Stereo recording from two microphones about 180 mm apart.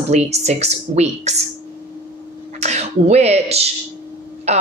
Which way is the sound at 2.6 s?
35° right (ahead or behind).